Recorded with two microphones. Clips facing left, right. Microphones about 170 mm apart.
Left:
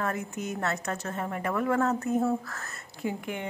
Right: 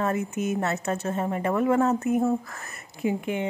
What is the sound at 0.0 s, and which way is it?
A woman's voice, 25° right (ahead or behind).